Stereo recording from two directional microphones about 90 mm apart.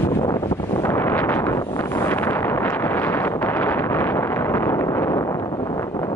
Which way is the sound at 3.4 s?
20° left (ahead or behind).